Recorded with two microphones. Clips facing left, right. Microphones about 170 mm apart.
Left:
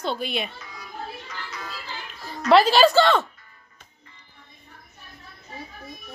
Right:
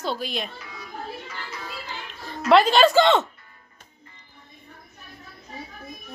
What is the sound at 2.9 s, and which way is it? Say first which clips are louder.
Speech: right 1 dB; 20° right (ahead or behind).